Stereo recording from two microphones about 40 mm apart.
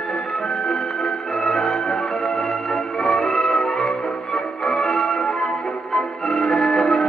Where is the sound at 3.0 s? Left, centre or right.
Centre.